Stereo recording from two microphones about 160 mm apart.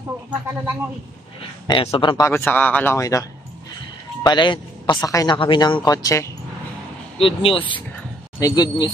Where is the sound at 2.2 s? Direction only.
15° left (ahead or behind).